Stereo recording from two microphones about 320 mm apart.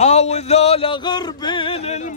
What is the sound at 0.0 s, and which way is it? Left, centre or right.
Music, left.